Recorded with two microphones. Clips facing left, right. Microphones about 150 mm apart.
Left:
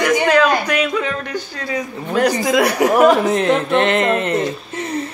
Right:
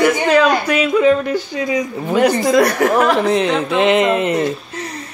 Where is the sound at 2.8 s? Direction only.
15° left (ahead or behind).